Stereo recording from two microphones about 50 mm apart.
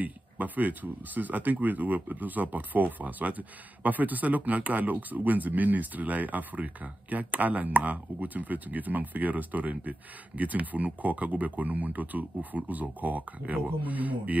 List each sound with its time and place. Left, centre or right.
0.0 s speech: right